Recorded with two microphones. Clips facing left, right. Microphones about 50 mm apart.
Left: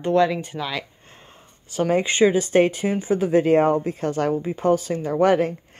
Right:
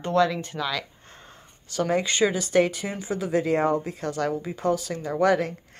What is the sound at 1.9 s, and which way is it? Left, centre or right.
Speech, left.